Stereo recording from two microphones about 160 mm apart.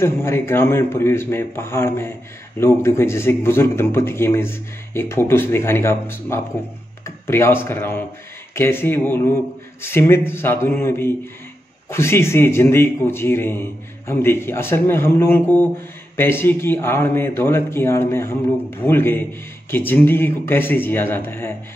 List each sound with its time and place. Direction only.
0.0 s a man's voice: 15° left (ahead or behind)